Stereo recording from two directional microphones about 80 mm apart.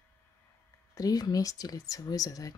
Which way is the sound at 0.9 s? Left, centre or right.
Left.